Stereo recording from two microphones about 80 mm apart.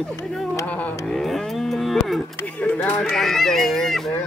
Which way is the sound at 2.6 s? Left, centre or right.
Centre.